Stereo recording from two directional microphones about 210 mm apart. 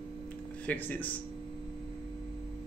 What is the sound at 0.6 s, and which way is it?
Speech, 10° left (ahead or behind).